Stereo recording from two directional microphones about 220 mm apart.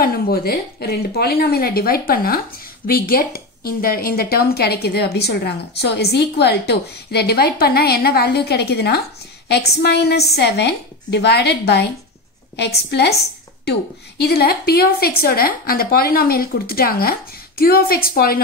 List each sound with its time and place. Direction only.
0.0 s a woman's voice: 45° left (ahead or behind)